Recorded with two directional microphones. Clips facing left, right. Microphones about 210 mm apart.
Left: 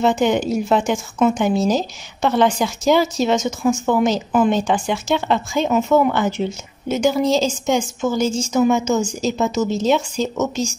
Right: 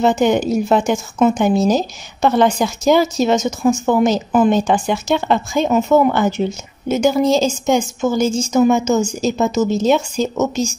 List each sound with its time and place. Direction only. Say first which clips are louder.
0.0 s speech: right 2 dB; 40° right (ahead or behind)